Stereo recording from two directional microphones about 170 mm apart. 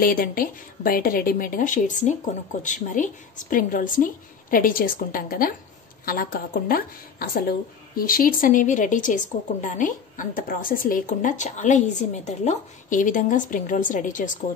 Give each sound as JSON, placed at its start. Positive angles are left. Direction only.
{"t": 0.0, "sound": "a woman's voice", "side_deg": 55}